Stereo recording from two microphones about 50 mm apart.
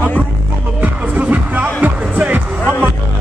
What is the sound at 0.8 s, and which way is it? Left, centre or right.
Music, right.